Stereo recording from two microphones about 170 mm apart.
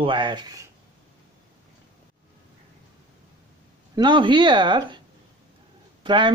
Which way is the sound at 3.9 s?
25° right (ahead or behind).